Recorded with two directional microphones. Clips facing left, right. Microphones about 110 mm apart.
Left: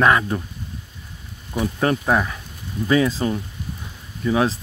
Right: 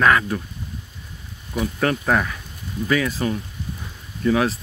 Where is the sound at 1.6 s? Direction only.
20° left (ahead or behind).